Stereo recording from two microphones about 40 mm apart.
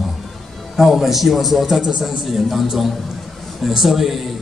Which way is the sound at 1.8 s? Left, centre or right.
Right.